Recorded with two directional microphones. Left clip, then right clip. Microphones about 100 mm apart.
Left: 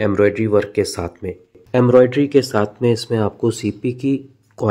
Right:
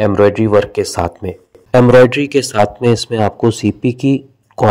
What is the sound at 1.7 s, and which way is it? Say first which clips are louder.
Speech: right 5 dB; 60° right (ahead or behind).